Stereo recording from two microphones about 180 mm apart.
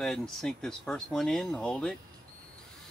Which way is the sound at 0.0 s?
Centre (ahead or behind).